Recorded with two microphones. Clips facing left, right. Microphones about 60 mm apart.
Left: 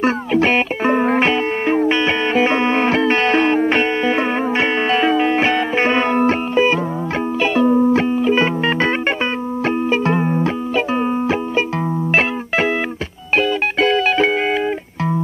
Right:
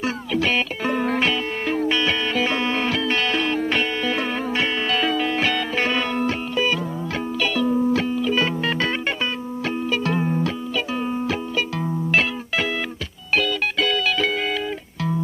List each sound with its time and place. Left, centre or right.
0.0 s music: left